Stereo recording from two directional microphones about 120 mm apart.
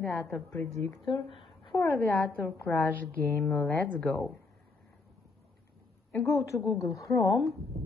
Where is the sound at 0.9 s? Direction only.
40° left (ahead or behind).